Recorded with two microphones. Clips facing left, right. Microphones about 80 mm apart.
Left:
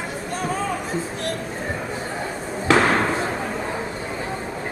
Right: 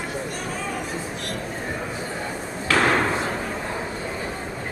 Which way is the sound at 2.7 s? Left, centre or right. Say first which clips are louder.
Left 4 dB; left.